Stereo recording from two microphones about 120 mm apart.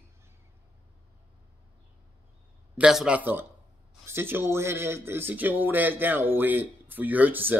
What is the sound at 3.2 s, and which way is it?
Speech, 15° right (ahead or behind).